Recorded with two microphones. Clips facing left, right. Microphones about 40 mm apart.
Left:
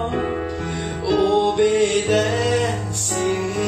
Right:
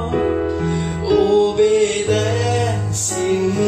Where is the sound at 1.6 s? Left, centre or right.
Centre.